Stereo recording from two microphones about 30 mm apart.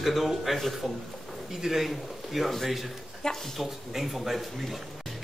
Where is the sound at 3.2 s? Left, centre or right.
Left.